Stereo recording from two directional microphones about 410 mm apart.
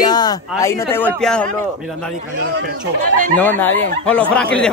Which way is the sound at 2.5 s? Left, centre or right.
Right.